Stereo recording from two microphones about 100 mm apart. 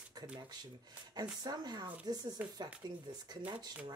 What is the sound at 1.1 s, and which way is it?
Speech, 40° right (ahead or behind).